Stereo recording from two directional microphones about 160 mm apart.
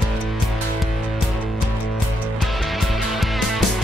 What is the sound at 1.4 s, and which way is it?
Music, centre (ahead or behind).